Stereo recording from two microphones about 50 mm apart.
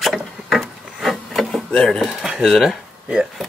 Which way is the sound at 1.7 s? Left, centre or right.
Centre.